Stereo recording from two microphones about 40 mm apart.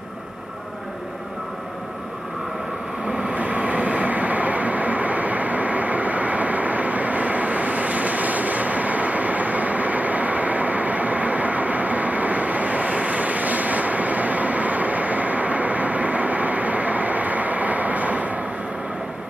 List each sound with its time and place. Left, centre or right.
3.2 s vehicle: right